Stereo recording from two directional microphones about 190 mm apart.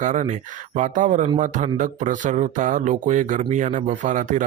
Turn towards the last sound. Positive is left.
turn(degrees=-40)  # may be behind; listen again after turning